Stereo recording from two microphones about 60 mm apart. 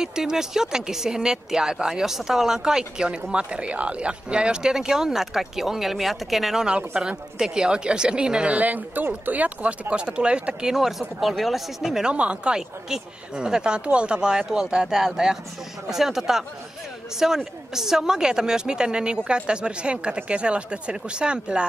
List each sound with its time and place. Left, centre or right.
0.0 s speech: centre
8.5 s speech: right; by 12.1 s centre
12.1 s speech: centre